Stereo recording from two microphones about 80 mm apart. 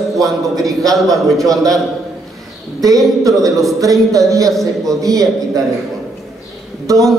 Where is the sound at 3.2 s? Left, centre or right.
Right.